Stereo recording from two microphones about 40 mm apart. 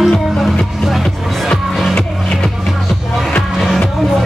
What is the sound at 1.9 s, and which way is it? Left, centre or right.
Music, left.